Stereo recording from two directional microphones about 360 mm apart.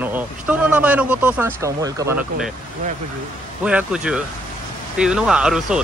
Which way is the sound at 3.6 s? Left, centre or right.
Centre.